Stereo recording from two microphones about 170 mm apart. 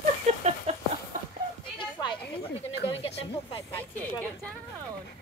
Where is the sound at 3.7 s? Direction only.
10° left (ahead or behind).